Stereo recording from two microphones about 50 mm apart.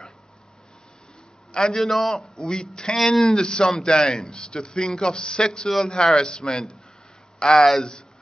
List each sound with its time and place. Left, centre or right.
1.5 s a man's voice: centre
1.8 s a man's voice: centre
2.3 s speech: centre